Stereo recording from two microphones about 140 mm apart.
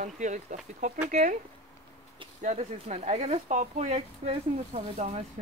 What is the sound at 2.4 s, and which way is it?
Speech, 60° right (ahead or behind).